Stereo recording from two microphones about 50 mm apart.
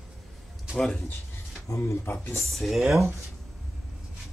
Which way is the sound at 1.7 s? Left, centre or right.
Left.